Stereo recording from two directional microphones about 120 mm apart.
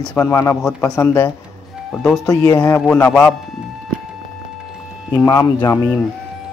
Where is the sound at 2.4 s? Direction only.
25° left (ahead or behind).